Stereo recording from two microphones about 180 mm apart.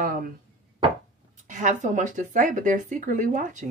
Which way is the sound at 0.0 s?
50° right (ahead or behind).